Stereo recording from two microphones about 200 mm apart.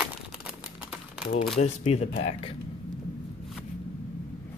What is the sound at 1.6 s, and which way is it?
Speech, 35° left (ahead or behind).